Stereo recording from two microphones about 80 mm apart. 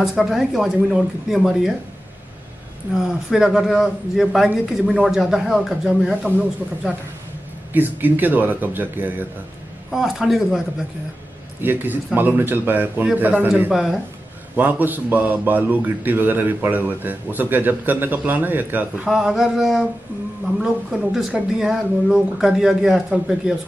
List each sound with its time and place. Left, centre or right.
0.0 s speech: centre
2.9 s a man's voice: centre
7.7 s a man's voice: right
9.8 s a man's voice: centre
11.6 s a man's voice: right
13.7 s a man's voice: centre
14.5 s a man's voice: right
19.0 s speech: centre